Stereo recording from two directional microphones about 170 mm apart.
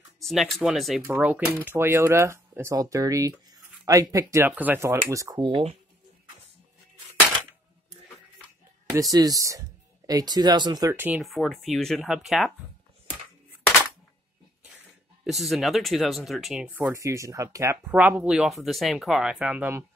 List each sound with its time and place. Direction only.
0.2 s speech: centre (ahead or behind); by 5.5 s 20° right (ahead or behind)
5.5 s speech: 35° right (ahead or behind)
9.1 s speech: 20° right (ahead or behind)
11.2 s speech: centre (ahead or behind)
15.2 s speech: centre (ahead or behind)